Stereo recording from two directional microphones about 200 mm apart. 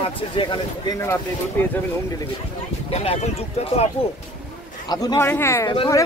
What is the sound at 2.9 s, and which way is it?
Speech, 30° left (ahead or behind).